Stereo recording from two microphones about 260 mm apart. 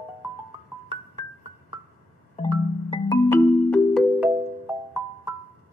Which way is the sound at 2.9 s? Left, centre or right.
Centre.